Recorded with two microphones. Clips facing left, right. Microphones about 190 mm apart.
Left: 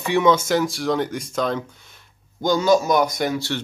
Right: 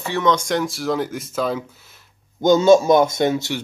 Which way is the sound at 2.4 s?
25° right (ahead or behind).